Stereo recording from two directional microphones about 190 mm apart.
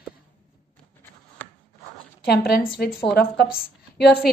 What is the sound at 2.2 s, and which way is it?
A woman's voice, 55° left (ahead or behind).